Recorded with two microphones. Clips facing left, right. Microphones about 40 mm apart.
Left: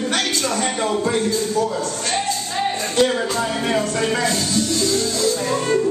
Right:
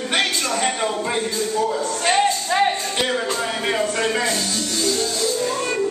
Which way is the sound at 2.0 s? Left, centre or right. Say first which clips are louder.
Right 9 dB; right.